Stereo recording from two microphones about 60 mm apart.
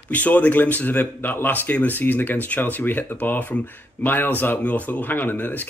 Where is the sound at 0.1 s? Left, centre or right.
Left.